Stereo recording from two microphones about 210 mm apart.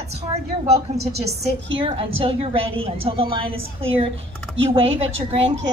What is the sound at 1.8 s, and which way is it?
A woman's voice, 25° right (ahead or behind).